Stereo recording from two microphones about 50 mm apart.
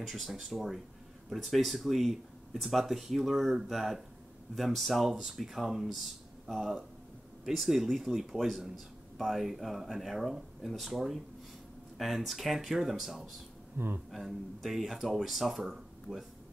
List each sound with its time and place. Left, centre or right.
0.0 s speech: centre
13.7 s speech: right
14.1 s speech: centre